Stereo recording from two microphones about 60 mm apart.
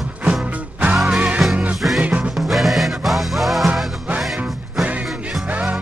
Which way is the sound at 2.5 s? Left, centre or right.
Centre.